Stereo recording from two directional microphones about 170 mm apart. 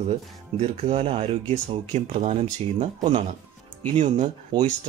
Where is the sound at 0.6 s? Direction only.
35° right (ahead or behind).